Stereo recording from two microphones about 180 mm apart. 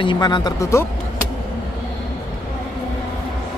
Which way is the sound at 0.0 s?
25° left (ahead or behind).